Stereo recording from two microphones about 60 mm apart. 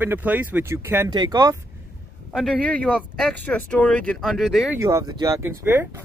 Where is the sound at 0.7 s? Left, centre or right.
Right.